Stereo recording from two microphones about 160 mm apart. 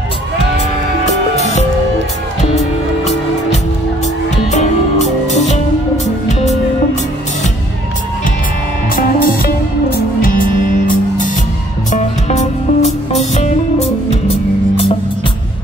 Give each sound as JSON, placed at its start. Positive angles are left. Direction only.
{"t": 8.9, "sound": "music", "side_deg": 70}
{"t": 11.9, "sound": "music", "side_deg": 45}